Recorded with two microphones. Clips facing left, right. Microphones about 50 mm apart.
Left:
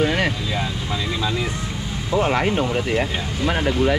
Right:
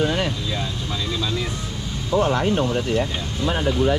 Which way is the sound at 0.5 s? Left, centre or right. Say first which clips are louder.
Left 2 dB; left.